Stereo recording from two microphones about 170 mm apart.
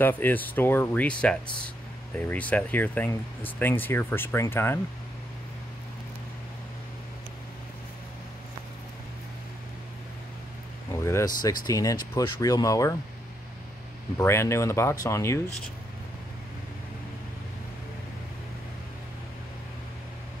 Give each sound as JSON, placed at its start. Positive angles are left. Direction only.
{"t": 0.0, "sound": "speech", "side_deg": 10}
{"t": 10.9, "sound": "speech", "side_deg": 15}
{"t": 14.1, "sound": "speech", "side_deg": 15}